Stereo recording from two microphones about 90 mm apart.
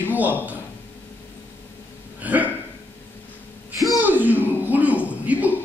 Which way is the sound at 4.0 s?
20° right (ahead or behind).